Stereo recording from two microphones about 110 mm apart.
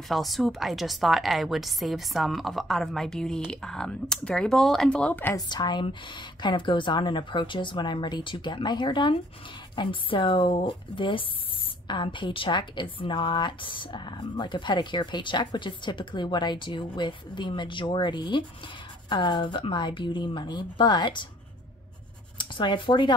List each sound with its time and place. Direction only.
0.1 s a woman's voice: centre (ahead or behind)
5.3 s a woman's voice: 40° left (ahead or behind)
22.4 s speech: 45° left (ahead or behind)